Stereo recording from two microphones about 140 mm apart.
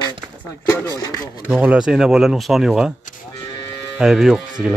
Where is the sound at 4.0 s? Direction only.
5° right (ahead or behind).